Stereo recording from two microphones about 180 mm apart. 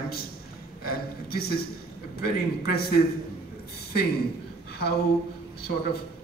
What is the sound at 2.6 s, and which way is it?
Speech, 60° left (ahead or behind).